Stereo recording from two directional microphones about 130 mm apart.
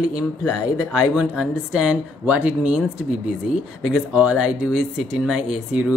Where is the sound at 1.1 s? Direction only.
5° right (ahead or behind).